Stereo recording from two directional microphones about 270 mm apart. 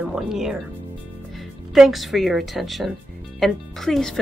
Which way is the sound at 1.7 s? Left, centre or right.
Centre.